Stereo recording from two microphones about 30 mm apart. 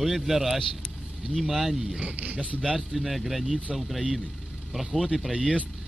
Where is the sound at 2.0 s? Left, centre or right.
Right.